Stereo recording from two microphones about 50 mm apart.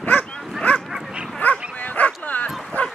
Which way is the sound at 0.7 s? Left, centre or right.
Left.